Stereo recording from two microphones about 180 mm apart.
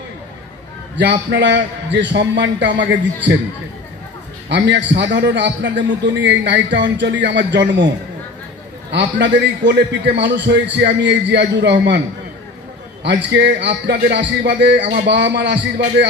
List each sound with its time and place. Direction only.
1.3 s a man's voice: 80° right
4.5 s a man's voice: 80° right
8.9 s a man's voice: 80° right
13.0 s a man's voice: 75° right (ahead or behind)